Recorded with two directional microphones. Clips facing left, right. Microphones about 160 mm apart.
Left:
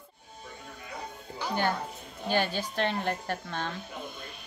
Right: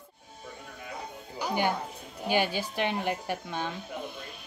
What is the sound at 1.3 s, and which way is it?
A child's voice, 15° right (ahead or behind).